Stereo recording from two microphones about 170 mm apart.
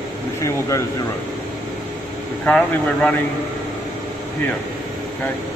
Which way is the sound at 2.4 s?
5° left (ahead or behind).